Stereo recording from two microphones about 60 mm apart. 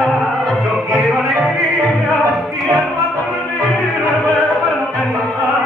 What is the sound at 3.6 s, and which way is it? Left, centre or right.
Music, left.